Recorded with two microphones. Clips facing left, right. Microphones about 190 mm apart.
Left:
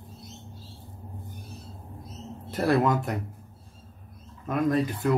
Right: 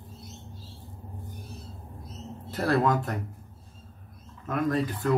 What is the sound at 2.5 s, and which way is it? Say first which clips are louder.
Speech: left 1 dB; 20° left (ahead or behind).